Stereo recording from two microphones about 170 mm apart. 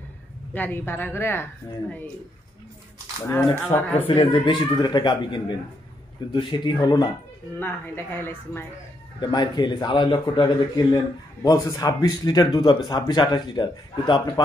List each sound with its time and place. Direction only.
0.5 s a woman's voice: 10° left (ahead or behind)
3.3 s a woman's voice: 10° left (ahead or behind)
4.0 s speech: 30° left (ahead or behind)
7.5 s a woman's voice: 10° left (ahead or behind)
9.2 s speech: 25° left (ahead or behind)